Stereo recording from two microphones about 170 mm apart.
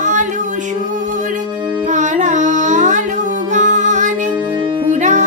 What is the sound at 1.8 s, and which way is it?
Carnatic music, 45° right (ahead or behind).